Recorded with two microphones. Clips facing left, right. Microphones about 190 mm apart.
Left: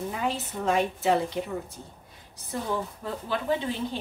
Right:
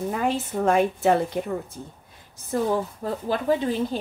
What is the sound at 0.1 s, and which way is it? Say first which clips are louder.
A woman's voice: right 5 dB; 50° right (ahead or behind).